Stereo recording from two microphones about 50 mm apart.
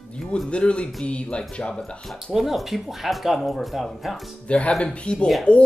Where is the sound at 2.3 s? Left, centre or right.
Centre.